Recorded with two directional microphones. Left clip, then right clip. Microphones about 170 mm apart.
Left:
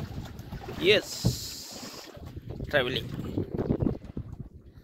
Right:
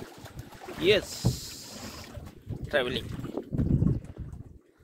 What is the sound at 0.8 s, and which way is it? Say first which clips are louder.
Boat: left 1 dB; 5° left (ahead or behind).